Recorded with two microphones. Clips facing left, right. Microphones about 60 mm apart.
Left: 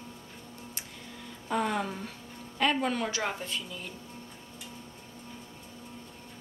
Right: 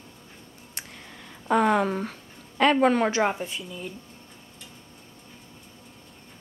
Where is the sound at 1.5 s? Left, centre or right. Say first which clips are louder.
Right 9 dB; right.